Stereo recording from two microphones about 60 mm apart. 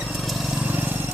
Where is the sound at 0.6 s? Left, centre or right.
Right.